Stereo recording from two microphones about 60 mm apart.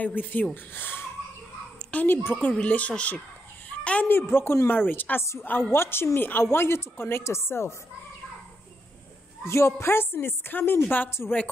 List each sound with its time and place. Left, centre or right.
0.0 s a woman's voice: left
3.6 s dog: left
4.1 s a woman's voice: left
9.4 s a woman's voice: left